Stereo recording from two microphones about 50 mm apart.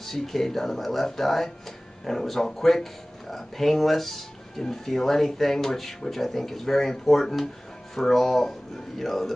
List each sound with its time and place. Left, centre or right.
0.0 s speech: centre